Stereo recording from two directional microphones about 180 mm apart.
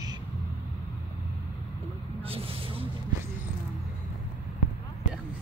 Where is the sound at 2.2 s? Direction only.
30° right (ahead or behind).